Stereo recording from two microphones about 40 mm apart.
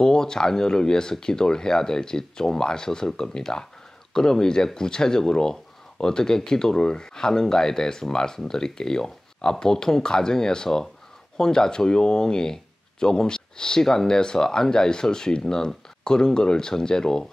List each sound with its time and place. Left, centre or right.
0.0 s speech: centre